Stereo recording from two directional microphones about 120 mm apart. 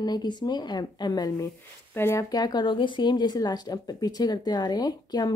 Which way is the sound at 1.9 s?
20° left (ahead or behind).